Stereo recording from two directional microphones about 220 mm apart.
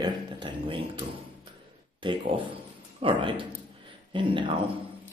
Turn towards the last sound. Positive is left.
turn(degrees=-20)  # may be behind; listen again after turning